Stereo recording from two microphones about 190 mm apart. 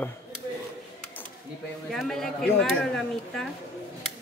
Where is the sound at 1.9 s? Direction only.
Centre (ahead or behind).